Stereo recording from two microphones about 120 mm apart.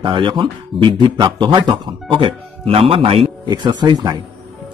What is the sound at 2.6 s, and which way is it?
Speech, 55° right (ahead or behind).